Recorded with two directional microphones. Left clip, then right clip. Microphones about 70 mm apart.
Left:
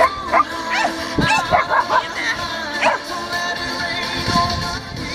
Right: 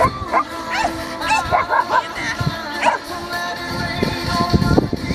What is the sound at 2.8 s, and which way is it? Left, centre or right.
Music, centre.